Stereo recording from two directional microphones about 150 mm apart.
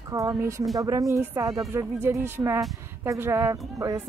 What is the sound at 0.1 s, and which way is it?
Speech, 20° right (ahead or behind).